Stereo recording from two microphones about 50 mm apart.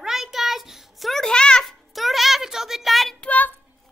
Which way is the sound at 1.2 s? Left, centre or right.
Centre.